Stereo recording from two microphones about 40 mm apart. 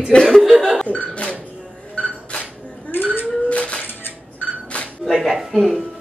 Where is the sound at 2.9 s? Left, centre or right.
Left.